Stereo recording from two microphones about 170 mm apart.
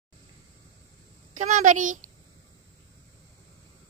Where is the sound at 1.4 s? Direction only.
50° right (ahead or behind).